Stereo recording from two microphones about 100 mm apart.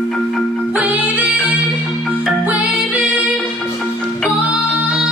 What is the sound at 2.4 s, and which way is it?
Music, 15° right (ahead or behind).